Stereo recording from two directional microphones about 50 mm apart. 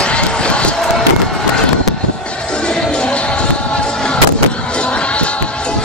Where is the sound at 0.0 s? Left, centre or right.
Left.